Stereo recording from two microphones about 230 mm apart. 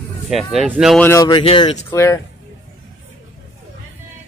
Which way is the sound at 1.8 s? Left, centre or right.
Centre.